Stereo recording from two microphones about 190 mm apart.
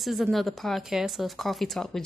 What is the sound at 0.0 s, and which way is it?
Speech, centre (ahead or behind).